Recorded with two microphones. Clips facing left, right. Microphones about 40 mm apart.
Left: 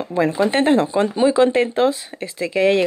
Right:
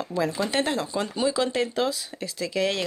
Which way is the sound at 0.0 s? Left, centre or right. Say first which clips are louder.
Left 8 dB; left.